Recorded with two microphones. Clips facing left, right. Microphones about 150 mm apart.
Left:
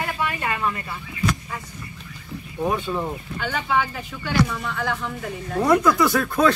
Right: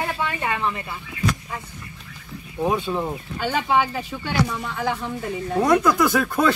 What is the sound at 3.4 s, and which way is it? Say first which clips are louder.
Speech: right 3 dB; 30° right (ahead or behind).